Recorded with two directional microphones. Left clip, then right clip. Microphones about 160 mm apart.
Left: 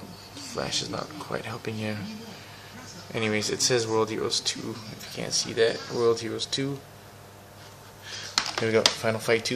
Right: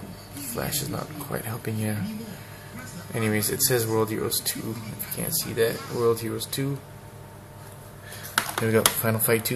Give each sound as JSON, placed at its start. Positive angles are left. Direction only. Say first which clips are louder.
{"t": 0.6, "sound": "speech", "louder": "left 1 dB", "side_deg": 5}
{"t": 3.1, "sound": "speech", "louder": "even", "side_deg": 15}
{"t": 8.4, "sound": "a sound", "louder": "right 1 dB", "side_deg": 20}
{"t": 8.8, "sound": "speech", "louder": "even", "side_deg": 5}